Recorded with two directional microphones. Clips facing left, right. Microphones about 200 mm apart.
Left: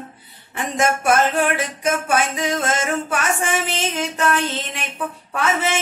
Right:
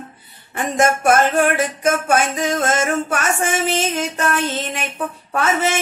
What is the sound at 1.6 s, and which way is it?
Music, 45° right (ahead or behind).